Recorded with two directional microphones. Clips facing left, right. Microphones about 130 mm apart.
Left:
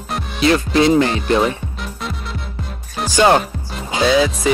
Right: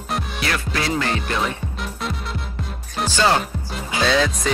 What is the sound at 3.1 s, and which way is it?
Speech, 15° left (ahead or behind).